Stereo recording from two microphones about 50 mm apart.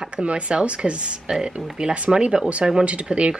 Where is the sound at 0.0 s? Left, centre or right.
Right.